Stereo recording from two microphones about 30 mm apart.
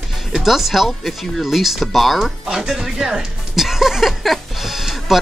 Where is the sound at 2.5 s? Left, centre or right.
Right.